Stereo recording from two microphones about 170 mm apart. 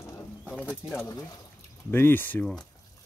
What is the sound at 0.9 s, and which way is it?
Speech, 20° left (ahead or behind).